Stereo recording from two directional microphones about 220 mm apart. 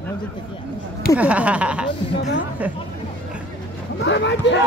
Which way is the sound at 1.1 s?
5° right (ahead or behind).